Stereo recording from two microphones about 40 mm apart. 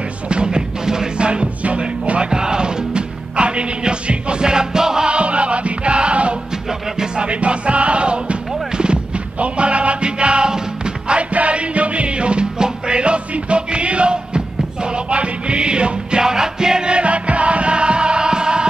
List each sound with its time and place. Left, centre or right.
0.3 s music: right
5.1 s music: right